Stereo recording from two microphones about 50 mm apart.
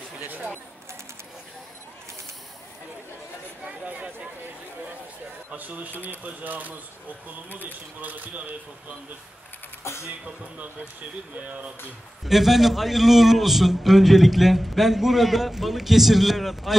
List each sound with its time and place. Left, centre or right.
0.2 s a sound: right
3.6 s chatter: right
5.5 s speech: right
11.3 s speech: right
12.3 s a man's voice: centre